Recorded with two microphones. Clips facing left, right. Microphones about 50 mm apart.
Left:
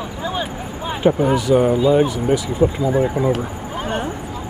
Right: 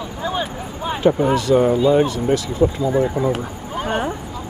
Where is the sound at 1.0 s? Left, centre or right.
Centre.